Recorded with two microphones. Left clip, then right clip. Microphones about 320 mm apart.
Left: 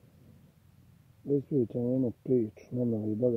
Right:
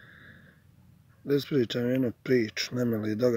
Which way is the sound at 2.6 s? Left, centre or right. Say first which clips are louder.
Right 3 dB; right.